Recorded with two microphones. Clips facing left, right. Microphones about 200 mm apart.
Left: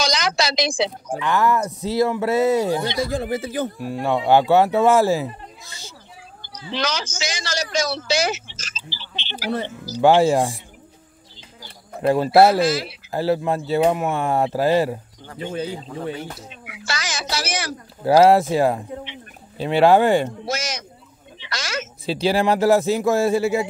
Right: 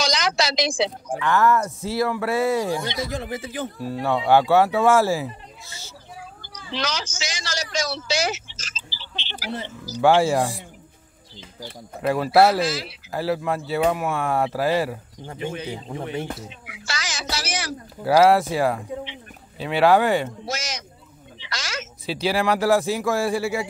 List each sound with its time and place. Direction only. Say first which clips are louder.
0.0 s a sound: left 1 dB; 65° left (ahead or behind)
1.1 s speech: even; 15° left (ahead or behind)
3.1 s speech: left 5 dB; 35° left (ahead or behind)
3.7 s speech: left 2 dB; 15° left (ahead or behind)
6.7 s a man's voice: left 3 dB; 60° left (ahead or behind)
9.9 s speech: left 3 dB; 20° left (ahead or behind)
12.1 s speech: left 3 dB; 25° left (ahead or behind)
12.6 s a man's voice: left 5 dB; 55° left (ahead or behind)
13.1 s speech: left 3 dB; 25° left (ahead or behind)
15.9 s speech: even; 25° right (ahead or behind)
16.6 s a sound: left 4 dB; 55° left (ahead or behind)
18.0 s speech: left 3 dB; 25° left (ahead or behind)
20.4 s speech: left 4 dB; 55° left (ahead or behind)
22.0 s speech: left 3 dB; 25° left (ahead or behind)